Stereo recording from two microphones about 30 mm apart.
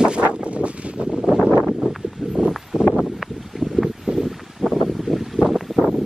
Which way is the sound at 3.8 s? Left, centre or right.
Centre.